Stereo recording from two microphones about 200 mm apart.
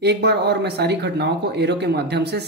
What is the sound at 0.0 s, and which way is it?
Speech, 55° right (ahead or behind).